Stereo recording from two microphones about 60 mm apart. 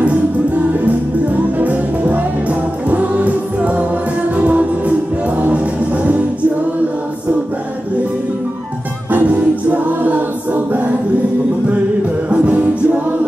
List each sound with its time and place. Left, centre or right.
0.0 s music: right
9.1 s music: right
12.3 s music: right